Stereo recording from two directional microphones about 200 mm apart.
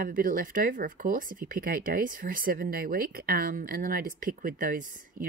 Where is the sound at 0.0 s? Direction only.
45° right (ahead or behind).